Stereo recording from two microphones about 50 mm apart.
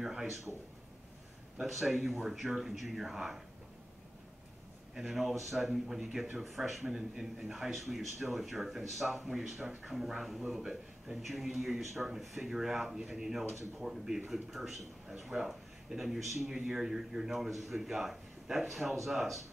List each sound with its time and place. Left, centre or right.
0.0 s a man's voice: centre
1.6 s a man's voice: centre
4.9 s a man's voice: centre